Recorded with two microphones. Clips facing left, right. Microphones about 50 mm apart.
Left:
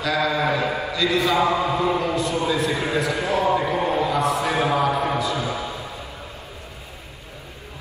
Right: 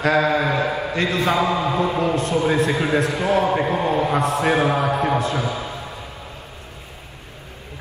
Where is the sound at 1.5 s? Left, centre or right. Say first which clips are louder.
Right 1 dB; right.